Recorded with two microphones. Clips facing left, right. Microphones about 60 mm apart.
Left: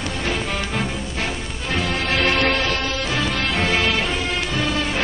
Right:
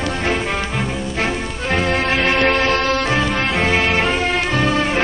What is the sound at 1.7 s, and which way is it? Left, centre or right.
Music, right.